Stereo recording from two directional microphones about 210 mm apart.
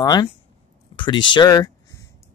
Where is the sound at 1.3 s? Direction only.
20° left (ahead or behind).